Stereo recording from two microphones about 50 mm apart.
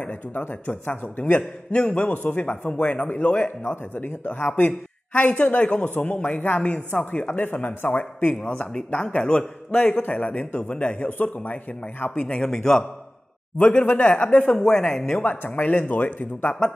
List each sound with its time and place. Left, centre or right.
0.0 s speech: left
1.7 s a man's voice: left
12.2 s a man's voice: centre
14.5 s speech: centre
15.2 s speech: left